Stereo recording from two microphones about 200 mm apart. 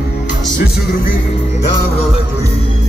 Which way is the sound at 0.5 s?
45° left (ahead or behind).